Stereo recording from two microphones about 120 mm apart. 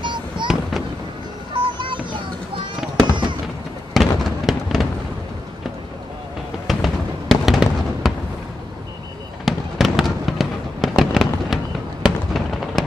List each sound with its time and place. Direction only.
0.0 s fireworks: 40° right (ahead or behind)
1.5 s music: 40° right (ahead or behind)
3.9 s fireworks: centre (ahead or behind)
6.7 s fireworks: centre (ahead or behind)
9.4 s fireworks: centre (ahead or behind)